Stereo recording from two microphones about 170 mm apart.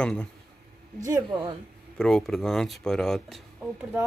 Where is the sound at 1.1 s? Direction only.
25° right (ahead or behind).